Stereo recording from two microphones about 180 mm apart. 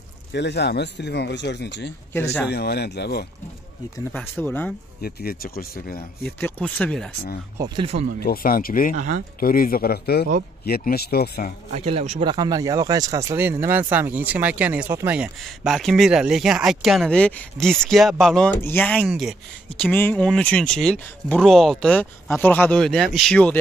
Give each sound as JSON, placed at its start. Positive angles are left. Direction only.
{"t": 0.3, "sound": "speech", "side_deg": 70}
{"t": 4.1, "sound": "speech", "side_deg": 10}
{"t": 5.0, "sound": "speech", "side_deg": 55}
{"t": 6.2, "sound": "speech", "side_deg": 5}
{"t": 7.5, "sound": "speech", "side_deg": -25}
{"t": 8.2, "sound": "speech", "side_deg": 55}
{"t": 8.9, "sound": "speech", "side_deg": -45}
{"t": 9.4, "sound": "speech", "side_deg": 55}
{"t": 11.7, "sound": "speech", "side_deg": -40}
{"t": 12.3, "sound": "speech", "side_deg": -20}
{"t": 19.0, "sound": "speech", "side_deg": 0}
{"t": 19.8, "sound": "speech", "side_deg": 10}